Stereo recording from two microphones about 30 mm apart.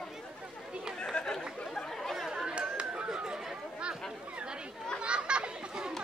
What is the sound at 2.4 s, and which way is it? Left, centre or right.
Chatter, right.